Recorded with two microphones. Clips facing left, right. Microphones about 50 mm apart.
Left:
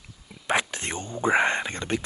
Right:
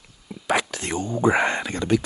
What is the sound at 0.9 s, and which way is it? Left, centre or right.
Speech, right.